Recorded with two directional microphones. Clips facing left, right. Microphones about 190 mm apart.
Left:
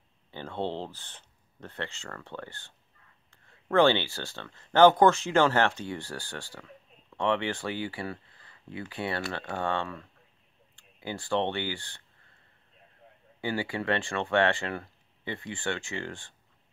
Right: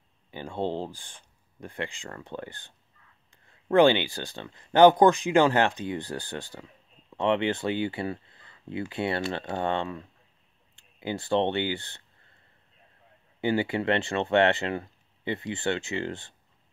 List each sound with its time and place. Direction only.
0.3 s speech: 15° right (ahead or behind)
13.4 s speech: 20° right (ahead or behind)